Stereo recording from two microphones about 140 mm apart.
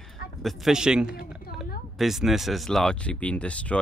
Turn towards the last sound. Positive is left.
turn(degrees=10)  # may be behind; listen again after turning